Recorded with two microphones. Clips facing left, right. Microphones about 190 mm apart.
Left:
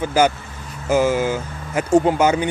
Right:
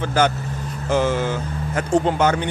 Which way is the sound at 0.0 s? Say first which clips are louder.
Left 2 dB; 10° left (ahead or behind).